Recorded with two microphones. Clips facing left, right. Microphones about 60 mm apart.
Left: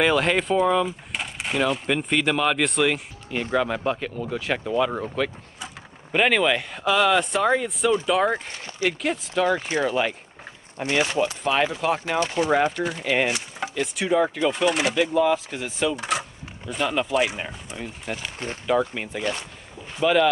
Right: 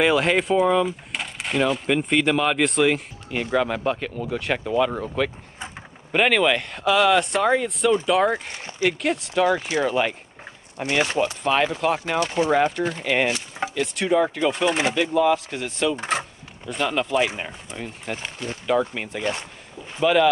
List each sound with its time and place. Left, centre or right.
0.0 s speech: centre
8.5 s speech: right
8.8 s speech: centre